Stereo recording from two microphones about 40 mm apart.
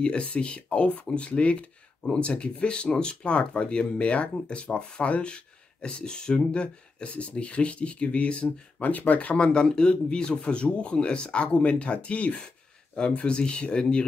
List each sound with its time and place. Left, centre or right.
0.0 s speech: left
8.7 s speech: left
9.4 s speech: left